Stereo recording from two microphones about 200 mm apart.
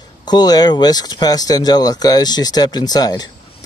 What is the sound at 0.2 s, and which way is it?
Speech, 20° left (ahead or behind).